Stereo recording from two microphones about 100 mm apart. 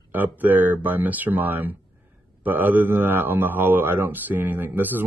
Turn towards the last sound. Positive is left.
turn(degrees=-20)  # may be behind; listen again after turning